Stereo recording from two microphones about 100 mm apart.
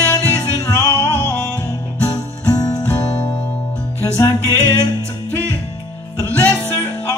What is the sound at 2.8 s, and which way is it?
Music, 15° left (ahead or behind).